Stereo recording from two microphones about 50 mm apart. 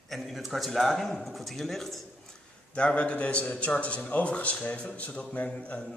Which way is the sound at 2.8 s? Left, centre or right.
Left.